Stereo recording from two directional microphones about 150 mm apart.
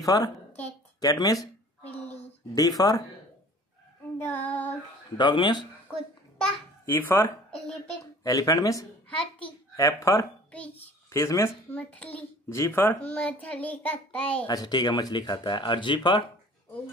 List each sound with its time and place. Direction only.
0.0 s a woman's voice: 25° left (ahead or behind)
2.8 s speech: 25° left (ahead or behind)
4.2 s child singing: 15° left (ahead or behind)
5.1 s a man's voice: 30° left (ahead or behind)
6.9 s a sound: 15° left (ahead or behind)
8.2 s speech: 25° left (ahead or behind)
9.1 s a sound: 5° left (ahead or behind)
9.8 s a child's voice: 20° left (ahead or behind)
14.5 s speech: 25° left (ahead or behind)